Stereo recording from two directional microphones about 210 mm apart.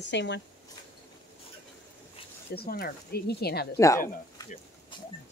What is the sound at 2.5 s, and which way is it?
Speech, 45° left (ahead or behind).